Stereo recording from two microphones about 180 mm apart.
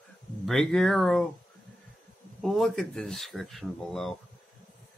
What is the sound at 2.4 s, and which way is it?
Speech, centre (ahead or behind).